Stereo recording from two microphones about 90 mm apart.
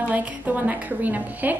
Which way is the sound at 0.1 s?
20° right (ahead or behind).